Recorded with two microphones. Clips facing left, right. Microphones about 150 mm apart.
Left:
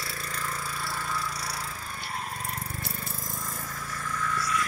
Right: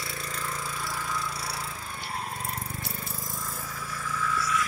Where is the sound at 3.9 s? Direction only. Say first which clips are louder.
Right 1 dB; 5° right (ahead or behind).